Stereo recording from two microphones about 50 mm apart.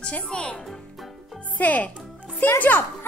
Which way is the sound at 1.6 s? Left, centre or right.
Left.